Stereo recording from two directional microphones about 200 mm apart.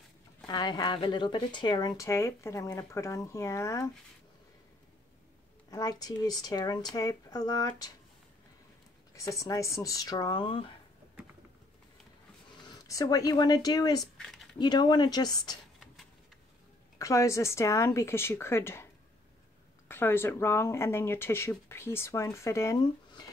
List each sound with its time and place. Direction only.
0.5 s speech: 20° left (ahead or behind)
5.7 s speech: 20° left (ahead or behind)
9.1 s speech: 15° left (ahead or behind)
12.6 s speech: 15° left (ahead or behind)
14.1 s speech: centre (ahead or behind)
14.6 s speech: 20° left (ahead or behind)
17.0 s speech: 15° left (ahead or behind)
19.9 s speech: 10° left (ahead or behind)